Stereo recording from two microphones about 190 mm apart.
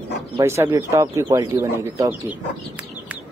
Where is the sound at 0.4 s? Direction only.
15° right (ahead or behind).